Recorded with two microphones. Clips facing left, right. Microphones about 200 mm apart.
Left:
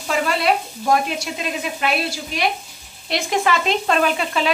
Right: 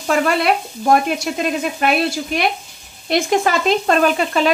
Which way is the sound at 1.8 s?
50° right (ahead or behind).